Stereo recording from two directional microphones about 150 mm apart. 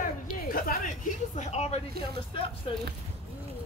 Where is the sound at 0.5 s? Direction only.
70° left (ahead or behind); by 2.8 s 35° left (ahead or behind).